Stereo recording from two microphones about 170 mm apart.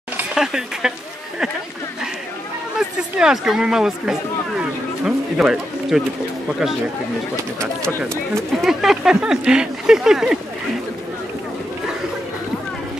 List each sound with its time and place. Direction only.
0.2 s speech: 5° right (ahead or behind)
3.2 s speech: 5° right (ahead or behind)
8.0 s speech: 15° right (ahead or behind)
8.5 s speech: centre (ahead or behind)